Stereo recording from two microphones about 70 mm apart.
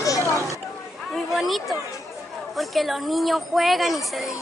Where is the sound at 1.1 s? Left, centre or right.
Centre.